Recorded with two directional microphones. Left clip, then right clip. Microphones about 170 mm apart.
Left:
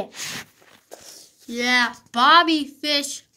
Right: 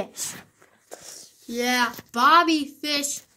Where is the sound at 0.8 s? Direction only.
10° right (ahead or behind).